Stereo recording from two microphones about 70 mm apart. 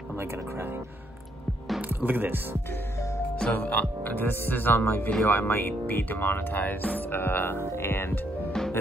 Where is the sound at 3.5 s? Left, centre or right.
Left.